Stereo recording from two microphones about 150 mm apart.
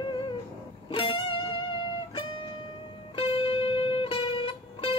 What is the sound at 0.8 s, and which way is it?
Music, 35° left (ahead or behind).